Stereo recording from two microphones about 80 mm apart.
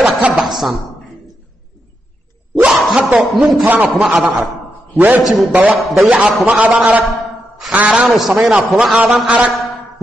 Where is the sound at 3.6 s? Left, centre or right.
Centre.